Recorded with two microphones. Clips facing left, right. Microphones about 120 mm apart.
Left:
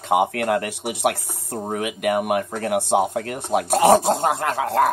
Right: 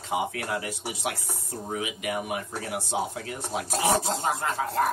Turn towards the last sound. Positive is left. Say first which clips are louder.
# left 7 dB
turn(degrees=70)  # may be behind; listen again after turning